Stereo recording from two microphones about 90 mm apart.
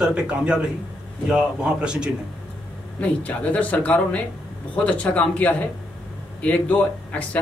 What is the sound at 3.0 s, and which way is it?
Speech, 15° left (ahead or behind).